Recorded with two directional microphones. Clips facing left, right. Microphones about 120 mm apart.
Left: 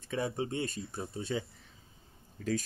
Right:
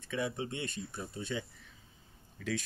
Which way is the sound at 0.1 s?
35° left (ahead or behind).